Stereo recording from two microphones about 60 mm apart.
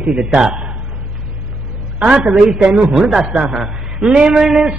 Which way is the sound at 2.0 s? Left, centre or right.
Centre.